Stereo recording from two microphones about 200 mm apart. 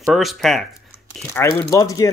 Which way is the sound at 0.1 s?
Centre (ahead or behind).